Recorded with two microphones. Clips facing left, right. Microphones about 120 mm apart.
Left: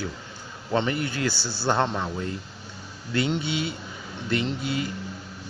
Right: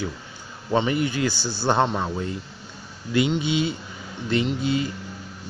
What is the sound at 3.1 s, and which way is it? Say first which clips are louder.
Speech: right 4 dB; 20° right (ahead or behind).